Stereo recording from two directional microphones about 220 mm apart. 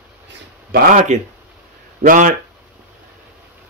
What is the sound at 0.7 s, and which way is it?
Speech, 35° right (ahead or behind).